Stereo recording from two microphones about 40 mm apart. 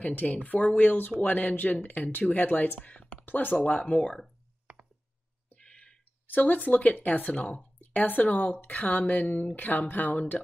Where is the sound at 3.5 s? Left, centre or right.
Left.